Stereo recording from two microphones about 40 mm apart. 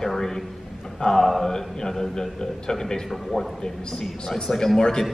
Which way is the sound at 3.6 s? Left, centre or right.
Centre.